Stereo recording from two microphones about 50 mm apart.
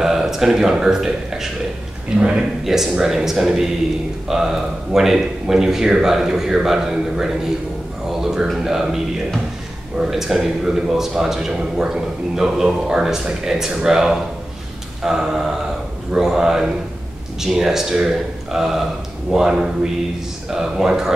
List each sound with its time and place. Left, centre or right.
0.0 s speech: centre
2.1 s a man's voice: right
2.6 s a man's voice: centre
8.1 s a sound: centre
8.5 s a man's voice: centre